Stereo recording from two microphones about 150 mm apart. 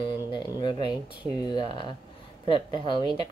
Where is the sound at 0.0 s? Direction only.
30° left (ahead or behind).